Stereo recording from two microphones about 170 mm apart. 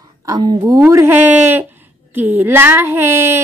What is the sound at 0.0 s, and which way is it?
A woman's voice, 20° right (ahead or behind).